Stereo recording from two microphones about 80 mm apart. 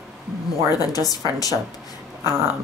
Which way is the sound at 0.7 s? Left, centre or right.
Left.